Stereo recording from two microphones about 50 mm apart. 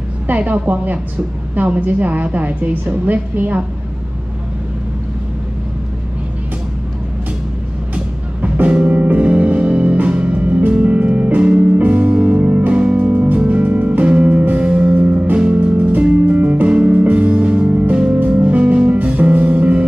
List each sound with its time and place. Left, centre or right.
0.4 s a woman's voice: right
7.9 s music: right